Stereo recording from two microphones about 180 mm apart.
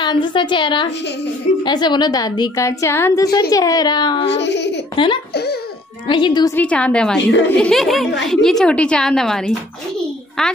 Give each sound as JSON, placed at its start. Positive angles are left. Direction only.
{"t": 0.0, "sound": "a woman's voice", "side_deg": 25}
{"t": 4.3, "sound": "speech", "side_deg": 75}
{"t": 4.9, "sound": "speech", "side_deg": 25}
{"t": 5.3, "sound": "speech", "side_deg": 65}
{"t": 6.0, "sound": "a woman's voice", "side_deg": 25}
{"t": 6.5, "sound": "a woman's voice", "side_deg": 5}
{"t": 7.2, "sound": "speech", "side_deg": 80}
{"t": 7.5, "sound": "a woman's voice", "side_deg": 5}